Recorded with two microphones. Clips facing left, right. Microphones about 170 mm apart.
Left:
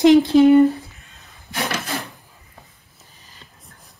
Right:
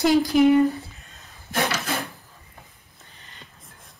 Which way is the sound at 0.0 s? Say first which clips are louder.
Left 6 dB; 25° left (ahead or behind).